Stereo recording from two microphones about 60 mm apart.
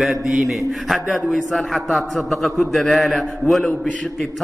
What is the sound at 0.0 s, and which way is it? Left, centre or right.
A man's voice, centre.